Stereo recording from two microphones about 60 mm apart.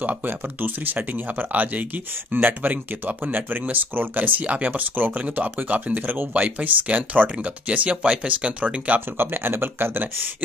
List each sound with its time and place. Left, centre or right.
1.5 s speech: right
9.2 s speech: right